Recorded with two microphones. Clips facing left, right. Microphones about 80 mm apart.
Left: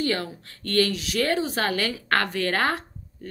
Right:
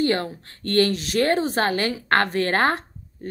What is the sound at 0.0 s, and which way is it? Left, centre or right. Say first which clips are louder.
A woman's voice: right 4 dB; right.